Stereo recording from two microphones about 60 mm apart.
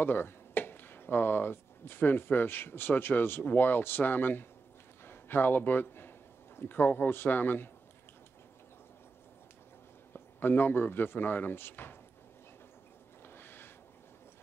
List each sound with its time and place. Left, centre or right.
0.0 s a man's voice: left
10.1 s speech: left
13.3 s a sound: left